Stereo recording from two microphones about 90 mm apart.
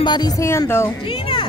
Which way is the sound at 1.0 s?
75° left (ahead or behind).